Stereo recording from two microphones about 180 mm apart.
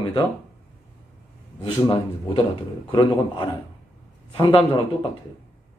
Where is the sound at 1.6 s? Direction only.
30° left (ahead or behind).